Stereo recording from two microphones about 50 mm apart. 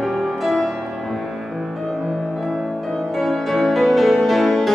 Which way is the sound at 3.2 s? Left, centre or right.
Centre.